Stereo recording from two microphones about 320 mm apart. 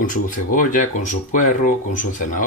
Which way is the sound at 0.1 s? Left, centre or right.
Left.